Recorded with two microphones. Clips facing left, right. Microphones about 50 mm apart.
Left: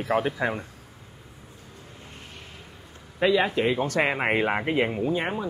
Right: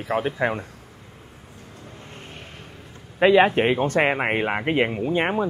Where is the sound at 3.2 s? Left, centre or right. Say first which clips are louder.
Right 6 dB; right.